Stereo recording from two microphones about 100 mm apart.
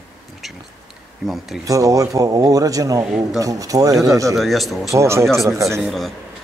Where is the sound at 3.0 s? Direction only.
5° right (ahead or behind).